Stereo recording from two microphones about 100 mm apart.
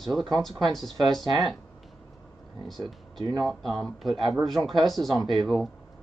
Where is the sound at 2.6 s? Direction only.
Centre (ahead or behind).